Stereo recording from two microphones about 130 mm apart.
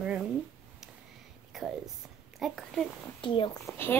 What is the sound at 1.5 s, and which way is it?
A child's voice, centre (ahead or behind).